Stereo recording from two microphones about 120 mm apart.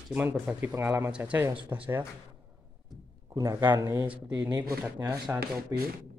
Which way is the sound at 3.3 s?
30° right (ahead or behind).